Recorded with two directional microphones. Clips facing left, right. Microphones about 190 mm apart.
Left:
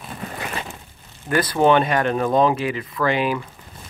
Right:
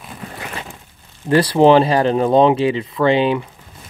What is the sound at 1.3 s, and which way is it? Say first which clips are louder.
Speech: right 6 dB; 30° right (ahead or behind).